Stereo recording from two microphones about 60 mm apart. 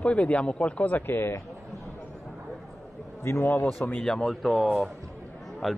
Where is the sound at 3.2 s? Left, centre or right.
Left.